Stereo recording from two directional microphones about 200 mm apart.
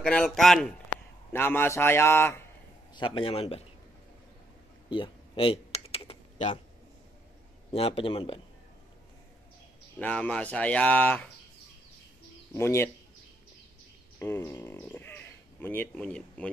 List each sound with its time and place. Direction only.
0.0 s a man's voice: 5° left (ahead or behind)
2.9 s a man's voice: 25° left (ahead or behind)
4.8 s typing: 25° left (ahead or behind)
7.7 s a man's voice: 30° left (ahead or behind)
9.9 s speech: 5° left (ahead or behind)
12.5 s speech: 10° left (ahead or behind)
14.2 s speech: 10° left (ahead or behind)